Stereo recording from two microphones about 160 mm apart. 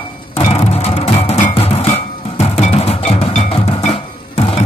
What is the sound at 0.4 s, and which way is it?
Music, 40° left (ahead or behind).